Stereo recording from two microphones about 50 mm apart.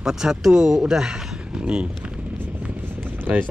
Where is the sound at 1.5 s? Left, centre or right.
Right.